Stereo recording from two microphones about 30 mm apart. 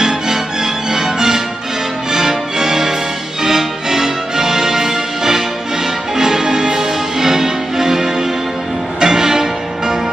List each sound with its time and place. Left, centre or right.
0.9 s music: centre